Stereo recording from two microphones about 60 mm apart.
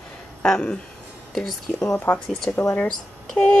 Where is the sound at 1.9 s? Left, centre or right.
Left.